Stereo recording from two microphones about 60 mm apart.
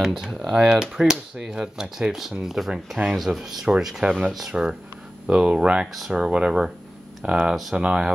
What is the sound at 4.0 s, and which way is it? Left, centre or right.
Speech, centre.